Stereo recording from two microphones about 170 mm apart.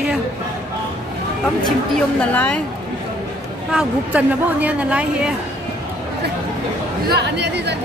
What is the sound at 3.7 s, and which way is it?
Speech, 5° right (ahead or behind).